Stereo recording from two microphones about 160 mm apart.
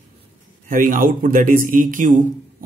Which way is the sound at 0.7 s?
60° right (ahead or behind).